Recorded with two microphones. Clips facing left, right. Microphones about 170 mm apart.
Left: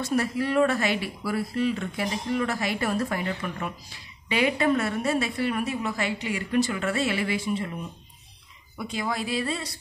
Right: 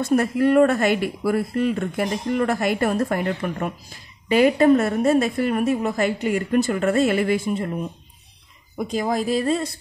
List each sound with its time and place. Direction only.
0.0 s speech: 50° right (ahead or behind)